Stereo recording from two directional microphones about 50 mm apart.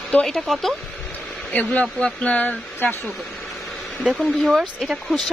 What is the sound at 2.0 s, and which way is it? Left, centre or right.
Speech, left.